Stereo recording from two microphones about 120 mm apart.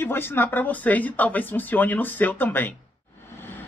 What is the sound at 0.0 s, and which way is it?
Speech, 20° left (ahead or behind).